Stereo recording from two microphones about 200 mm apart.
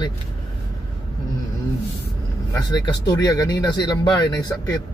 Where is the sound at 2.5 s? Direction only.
20° left (ahead or behind).